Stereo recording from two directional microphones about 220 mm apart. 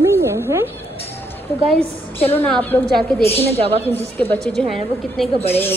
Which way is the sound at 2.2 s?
10° left (ahead or behind).